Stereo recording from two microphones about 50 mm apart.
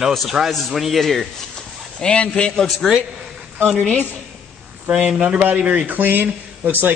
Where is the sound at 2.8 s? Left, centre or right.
Centre.